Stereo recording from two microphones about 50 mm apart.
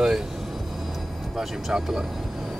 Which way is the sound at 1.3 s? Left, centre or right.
Centre.